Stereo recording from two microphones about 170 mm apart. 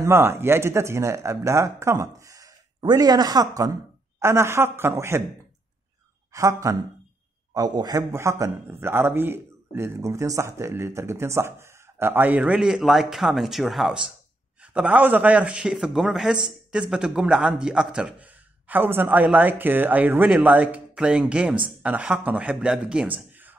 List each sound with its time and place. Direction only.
0.0 s speech: 15° right (ahead or behind)
6.3 s speech: 20° right (ahead or behind)